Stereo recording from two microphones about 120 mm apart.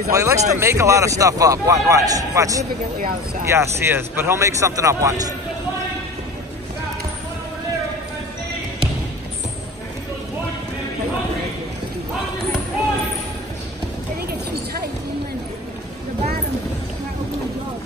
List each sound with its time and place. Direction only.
0.1 s a man's voice: 25° right (ahead or behind)